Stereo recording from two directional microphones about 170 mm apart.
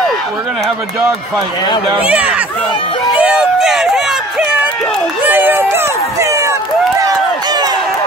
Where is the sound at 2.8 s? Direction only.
30° left (ahead or behind).